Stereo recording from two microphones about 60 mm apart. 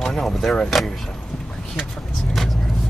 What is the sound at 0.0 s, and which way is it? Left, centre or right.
Speech, centre.